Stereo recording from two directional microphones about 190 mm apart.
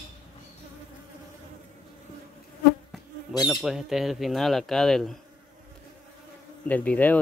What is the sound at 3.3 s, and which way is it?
Speech, centre (ahead or behind).